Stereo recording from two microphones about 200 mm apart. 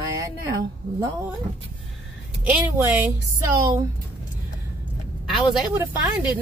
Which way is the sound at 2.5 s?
10° right (ahead or behind).